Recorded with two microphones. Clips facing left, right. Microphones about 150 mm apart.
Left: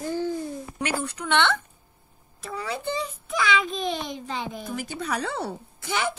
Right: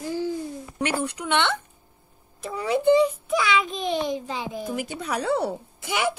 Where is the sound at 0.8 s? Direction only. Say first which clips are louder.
Right 3 dB; 20° right (ahead or behind).